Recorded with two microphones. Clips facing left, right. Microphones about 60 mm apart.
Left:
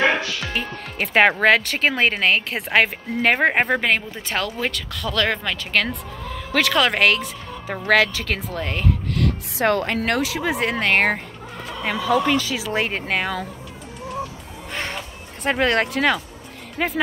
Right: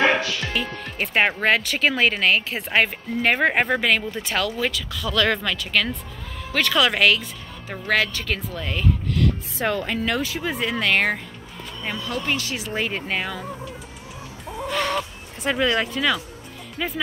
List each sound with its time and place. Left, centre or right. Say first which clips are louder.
0.5 s speech: even; left
0.9 s speech: left 5 dB; left
1.6 s speech: even; left
2.5 s speech: left 2 dB; left
3.4 s speech: left 1 dB; left
4.6 s speech: even; left
5.2 s speech: right 1 dB; left
5.6 s speech: left 1 dB; left
7.9 s speech: left 4 dB; left
10.8 s speech: left 1 dB; left
11.8 s speech: left 8 dB; left
12.9 s speech: left 3 dB; left
14.7 s music: right 5 dB; left
15.6 s speech: left 3 dB; left